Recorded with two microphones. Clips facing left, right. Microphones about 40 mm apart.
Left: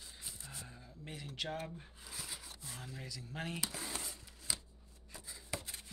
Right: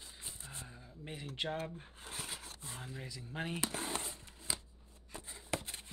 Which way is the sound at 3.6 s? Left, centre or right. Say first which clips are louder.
Right 4 dB; right.